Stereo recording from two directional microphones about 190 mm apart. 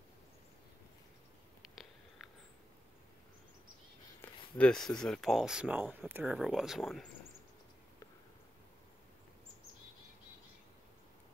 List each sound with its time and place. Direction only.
4.6 s speech: 5° left (ahead or behind)